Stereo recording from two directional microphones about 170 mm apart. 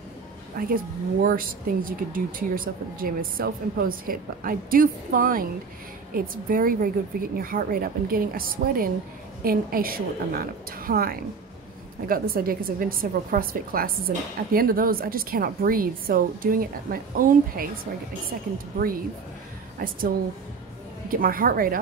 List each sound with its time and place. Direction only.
0.6 s a woman's voice: 55° right (ahead or behind)
21.1 s a woman's voice: 55° right (ahead or behind)